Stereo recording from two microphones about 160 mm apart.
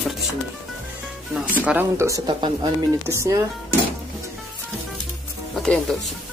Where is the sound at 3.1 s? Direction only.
20° right (ahead or behind).